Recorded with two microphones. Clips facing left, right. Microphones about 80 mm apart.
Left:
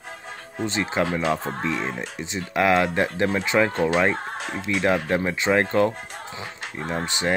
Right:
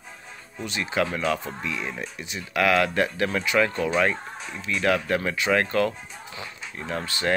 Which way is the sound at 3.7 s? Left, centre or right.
Left.